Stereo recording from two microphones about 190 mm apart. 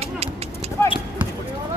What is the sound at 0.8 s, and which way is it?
Clip-clop, 10° left (ahead or behind).